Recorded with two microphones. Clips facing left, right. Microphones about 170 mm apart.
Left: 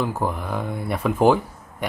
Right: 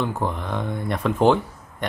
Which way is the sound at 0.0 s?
5° left (ahead or behind).